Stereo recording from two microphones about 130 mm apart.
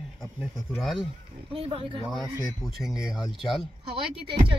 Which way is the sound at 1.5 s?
45° right (ahead or behind).